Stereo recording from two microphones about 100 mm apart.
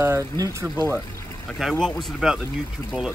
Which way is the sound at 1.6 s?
Centre (ahead or behind).